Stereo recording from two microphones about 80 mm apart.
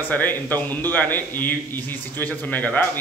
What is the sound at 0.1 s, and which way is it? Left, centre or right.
A man's voice, left.